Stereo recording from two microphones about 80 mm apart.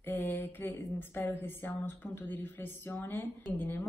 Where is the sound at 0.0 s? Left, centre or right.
Left.